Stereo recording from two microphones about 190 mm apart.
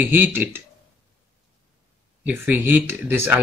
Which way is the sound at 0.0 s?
10° right (ahead or behind).